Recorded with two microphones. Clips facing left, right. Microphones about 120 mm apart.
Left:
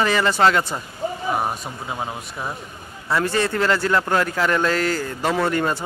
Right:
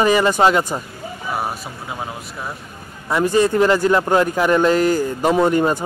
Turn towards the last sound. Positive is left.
turn(degrees=-15)  # may be behind; listen again after turning